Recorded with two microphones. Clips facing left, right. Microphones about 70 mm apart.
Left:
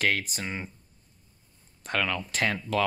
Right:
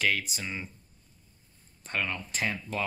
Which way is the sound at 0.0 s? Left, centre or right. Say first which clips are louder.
Left 2 dB; left.